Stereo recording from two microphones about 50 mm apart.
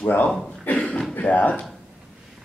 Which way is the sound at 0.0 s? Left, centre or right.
Left.